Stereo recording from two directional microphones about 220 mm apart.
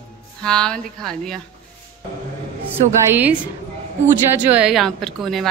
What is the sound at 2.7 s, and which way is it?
A woman's voice, 10° right (ahead or behind).